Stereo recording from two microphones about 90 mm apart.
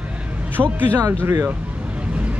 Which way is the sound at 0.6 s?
20° right (ahead or behind).